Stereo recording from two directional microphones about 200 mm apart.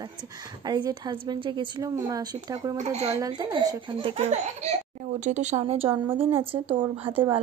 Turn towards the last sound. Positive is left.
turn(degrees=-25)  # may be behind; listen again after turning